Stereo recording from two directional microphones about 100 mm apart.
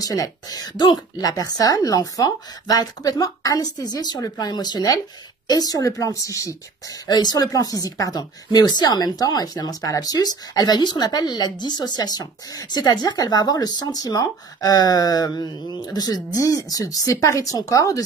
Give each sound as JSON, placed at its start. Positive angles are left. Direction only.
{"t": 0.0, "sound": "speech", "side_deg": 35}